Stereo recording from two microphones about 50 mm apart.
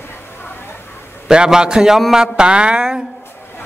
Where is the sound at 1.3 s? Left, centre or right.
Centre.